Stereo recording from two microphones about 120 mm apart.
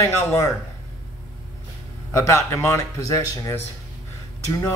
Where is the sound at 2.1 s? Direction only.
25° left (ahead or behind).